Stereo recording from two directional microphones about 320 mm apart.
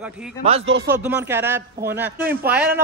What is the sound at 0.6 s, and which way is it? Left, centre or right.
Speech, right.